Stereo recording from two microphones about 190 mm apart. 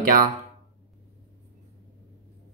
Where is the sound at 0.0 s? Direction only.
50° right (ahead or behind).